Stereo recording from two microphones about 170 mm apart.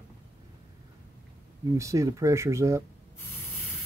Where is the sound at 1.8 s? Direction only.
20° right (ahead or behind).